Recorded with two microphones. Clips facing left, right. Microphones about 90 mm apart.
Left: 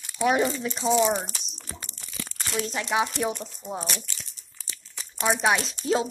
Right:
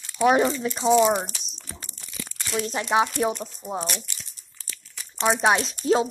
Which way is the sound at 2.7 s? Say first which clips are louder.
Right 4 dB; 30° right (ahead or behind).